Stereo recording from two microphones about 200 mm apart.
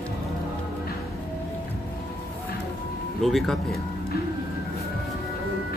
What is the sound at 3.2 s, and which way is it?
Speech, centre (ahead or behind).